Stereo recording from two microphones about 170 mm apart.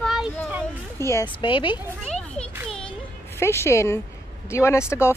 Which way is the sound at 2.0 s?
5° left (ahead or behind).